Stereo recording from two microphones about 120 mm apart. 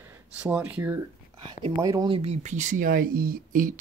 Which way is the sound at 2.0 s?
50° right (ahead or behind).